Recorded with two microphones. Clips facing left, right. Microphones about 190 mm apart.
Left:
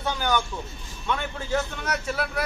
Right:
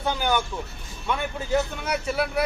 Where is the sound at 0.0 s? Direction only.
10° right (ahead or behind).